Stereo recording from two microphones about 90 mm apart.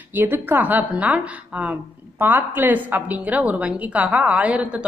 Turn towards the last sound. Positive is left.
turn(degrees=-15)  # may be behind; listen again after turning